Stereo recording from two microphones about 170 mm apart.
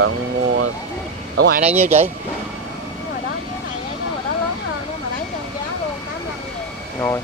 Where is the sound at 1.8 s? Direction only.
40° right (ahead or behind).